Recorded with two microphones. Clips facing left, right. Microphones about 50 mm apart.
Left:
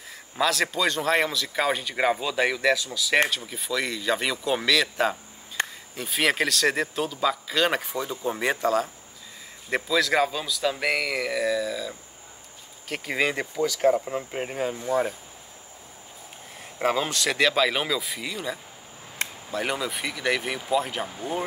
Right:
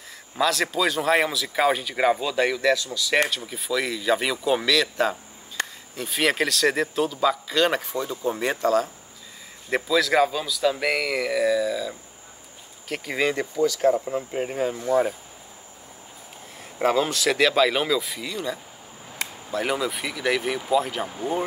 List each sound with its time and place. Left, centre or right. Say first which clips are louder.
0.4 s speech: right 1 dB; centre
5.6 s a sound: left 1 dB; left
5.9 s speech: right 1 dB; centre
14.5 s speech: right 3 dB; centre
16.7 s speech: right 3 dB; centre